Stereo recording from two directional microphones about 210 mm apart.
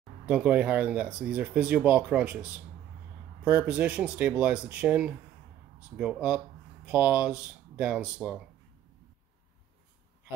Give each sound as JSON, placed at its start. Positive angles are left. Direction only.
{"t": 0.3, "sound": "speech", "side_deg": -5}